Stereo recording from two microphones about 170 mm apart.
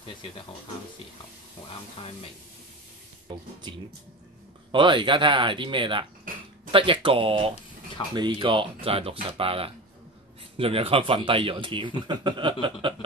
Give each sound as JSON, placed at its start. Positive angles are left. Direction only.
{"t": 4.7, "sound": "speech", "side_deg": -30}